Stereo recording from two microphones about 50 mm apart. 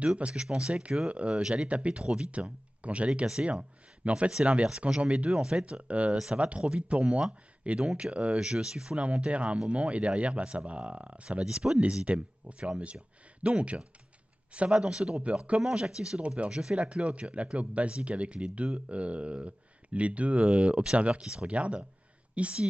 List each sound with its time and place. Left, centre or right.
0.0 s speech: right